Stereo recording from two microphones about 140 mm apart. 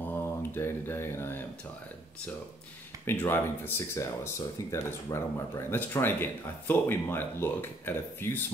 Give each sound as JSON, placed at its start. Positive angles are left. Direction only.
{"t": 0.0, "sound": "speech", "side_deg": 15}
{"t": 3.1, "sound": "speech", "side_deg": 15}